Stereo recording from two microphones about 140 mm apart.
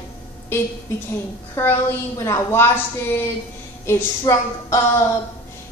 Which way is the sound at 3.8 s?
25° left (ahead or behind).